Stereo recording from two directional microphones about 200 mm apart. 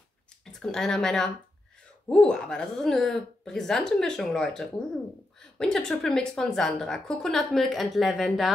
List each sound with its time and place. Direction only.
0.5 s a woman's voice: 5° left (ahead or behind)